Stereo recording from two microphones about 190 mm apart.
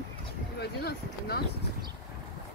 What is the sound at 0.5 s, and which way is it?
Speech, 55° left (ahead or behind).